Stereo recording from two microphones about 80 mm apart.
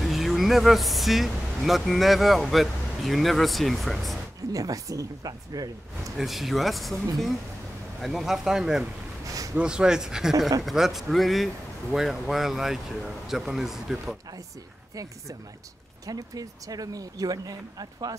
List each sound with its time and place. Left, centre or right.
0.0 s speech: centre
4.5 s speech: right
6.1 s a man's voice: centre
8.0 s a man's voice: centre
9.2 s a sound: right
9.6 s a man's voice: centre
16.1 s speech: right